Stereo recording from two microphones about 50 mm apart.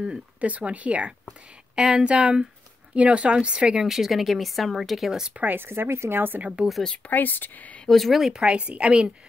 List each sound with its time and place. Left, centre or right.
0.4 s speech: right
1.8 s speech: centre
5.4 s speech: right
5.7 s speech: right
6.1 s speech: right
6.4 s speech: centre
7.1 s speech: left
7.9 s speech: centre
8.3 s speech: centre
8.5 s speech: right